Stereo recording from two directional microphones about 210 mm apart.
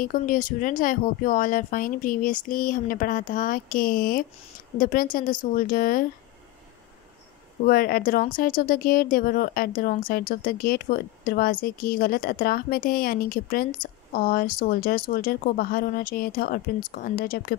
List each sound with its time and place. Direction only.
0.0 s speech: 40° left (ahead or behind)
7.6 s speech: 45° left (ahead or behind)